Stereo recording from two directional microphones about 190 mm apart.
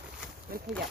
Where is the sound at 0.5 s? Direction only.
50° right (ahead or behind).